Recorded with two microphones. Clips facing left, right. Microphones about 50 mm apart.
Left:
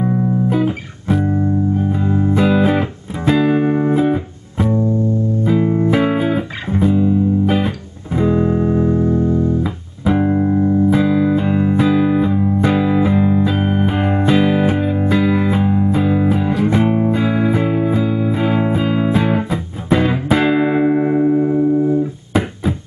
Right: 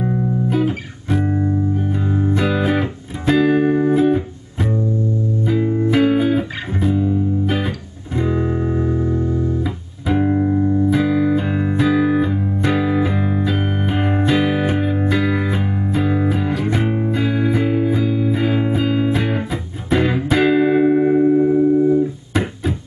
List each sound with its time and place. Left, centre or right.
0.0 s music: centre
2.0 s music: centre
2.3 s music: centre
5.6 s music: left
6.8 s music: centre